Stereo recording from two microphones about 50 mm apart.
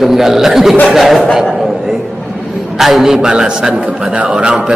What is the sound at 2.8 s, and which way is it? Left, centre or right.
Speech, centre.